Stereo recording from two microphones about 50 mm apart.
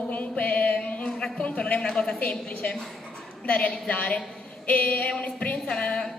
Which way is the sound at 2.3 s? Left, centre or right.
Left.